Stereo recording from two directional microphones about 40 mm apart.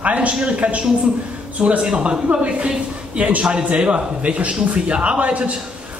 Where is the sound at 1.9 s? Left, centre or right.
Right.